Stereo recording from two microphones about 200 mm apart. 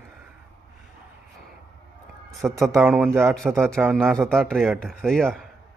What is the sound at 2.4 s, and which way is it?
A man's voice, centre (ahead or behind).